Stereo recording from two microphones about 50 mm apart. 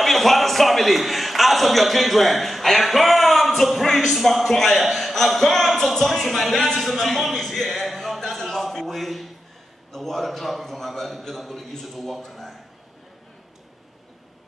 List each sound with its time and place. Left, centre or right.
0.0 s a man's voice: centre